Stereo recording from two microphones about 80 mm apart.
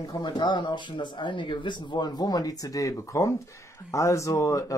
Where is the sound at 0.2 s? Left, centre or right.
Left.